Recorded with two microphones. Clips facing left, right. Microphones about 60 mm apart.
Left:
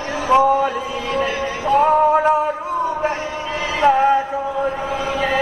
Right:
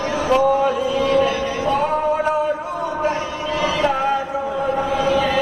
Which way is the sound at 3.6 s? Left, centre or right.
Left.